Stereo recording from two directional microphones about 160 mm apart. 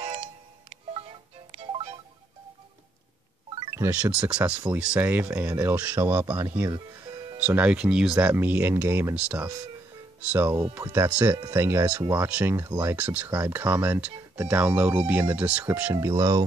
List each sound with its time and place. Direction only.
0.0 s music: 40° right (ahead or behind)
3.5 s music: 30° right (ahead or behind)
3.8 s speech: 10° right (ahead or behind)
7.3 s speech: 5° right (ahead or behind)
12.9 s speech: 10° right (ahead or behind)